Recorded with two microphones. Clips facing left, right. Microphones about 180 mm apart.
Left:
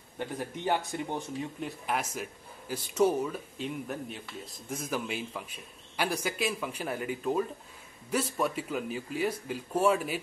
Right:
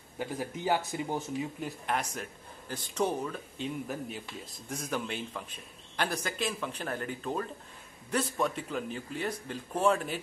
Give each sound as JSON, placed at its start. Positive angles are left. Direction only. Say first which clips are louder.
{"t": 0.2, "sound": "a man's voice", "louder": "even", "side_deg": -5}